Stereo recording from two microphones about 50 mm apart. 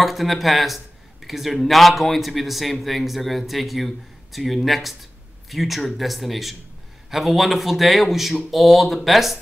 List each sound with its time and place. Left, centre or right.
0.0 s speech: centre